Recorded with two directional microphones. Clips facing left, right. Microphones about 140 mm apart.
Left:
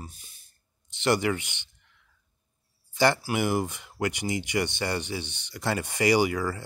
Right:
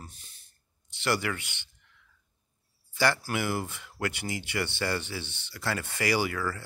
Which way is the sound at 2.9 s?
20° left (ahead or behind).